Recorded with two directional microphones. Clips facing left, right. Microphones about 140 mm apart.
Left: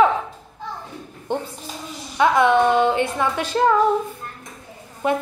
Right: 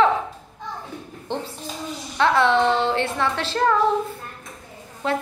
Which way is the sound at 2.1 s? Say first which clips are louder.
Left 2 dB; 10° left (ahead or behind).